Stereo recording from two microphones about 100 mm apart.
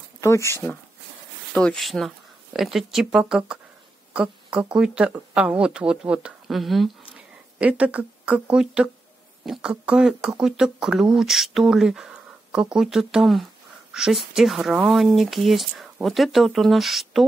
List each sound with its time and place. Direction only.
0.2 s speech: 30° left (ahead or behind)
1.5 s speech: 10° left (ahead or behind)
7.2 s speech: 10° right (ahead or behind)